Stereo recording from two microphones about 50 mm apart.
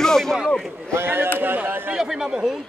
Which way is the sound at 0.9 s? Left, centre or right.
Right.